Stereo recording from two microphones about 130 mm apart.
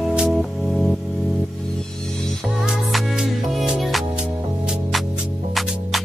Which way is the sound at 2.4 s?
Centre (ahead or behind).